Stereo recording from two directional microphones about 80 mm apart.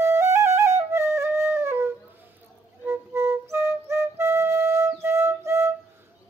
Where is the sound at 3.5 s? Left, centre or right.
Right.